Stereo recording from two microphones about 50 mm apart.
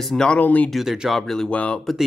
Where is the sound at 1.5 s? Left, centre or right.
Left.